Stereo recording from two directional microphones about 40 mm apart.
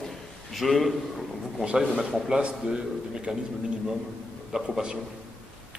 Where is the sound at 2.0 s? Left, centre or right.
Centre.